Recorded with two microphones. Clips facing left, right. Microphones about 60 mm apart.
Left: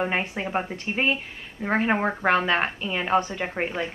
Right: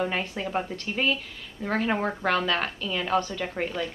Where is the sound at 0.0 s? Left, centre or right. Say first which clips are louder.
Left 2 dB; left.